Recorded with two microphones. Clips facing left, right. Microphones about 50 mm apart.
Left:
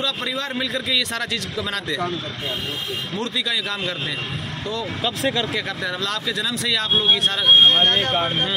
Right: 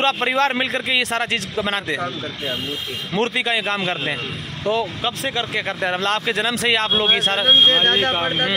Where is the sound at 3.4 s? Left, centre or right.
Right.